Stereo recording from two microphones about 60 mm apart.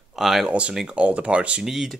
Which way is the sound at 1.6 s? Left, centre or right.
Centre.